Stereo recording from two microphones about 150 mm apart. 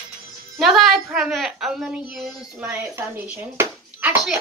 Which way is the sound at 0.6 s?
Centre (ahead or behind).